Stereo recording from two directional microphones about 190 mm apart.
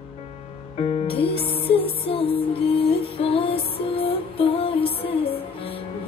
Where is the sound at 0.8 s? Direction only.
30° left (ahead or behind).